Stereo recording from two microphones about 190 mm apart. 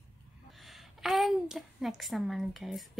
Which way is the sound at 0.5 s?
Centre (ahead or behind).